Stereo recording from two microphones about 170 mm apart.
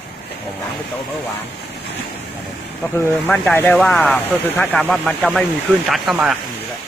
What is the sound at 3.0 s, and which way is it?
Speech, 10° left (ahead or behind).